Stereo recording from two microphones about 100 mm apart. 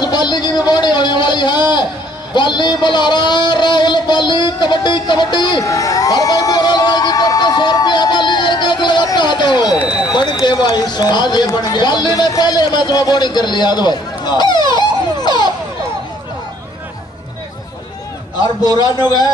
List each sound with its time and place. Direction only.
0.0 s a sound: 45° left (ahead or behind)
10.4 s speech: 45° left (ahead or behind)
18.6 s a man's voice: 40° left (ahead or behind)